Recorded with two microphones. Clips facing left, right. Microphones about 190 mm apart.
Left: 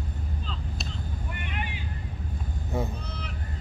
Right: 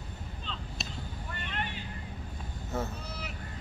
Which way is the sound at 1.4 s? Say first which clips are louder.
Even; 10° left (ahead or behind).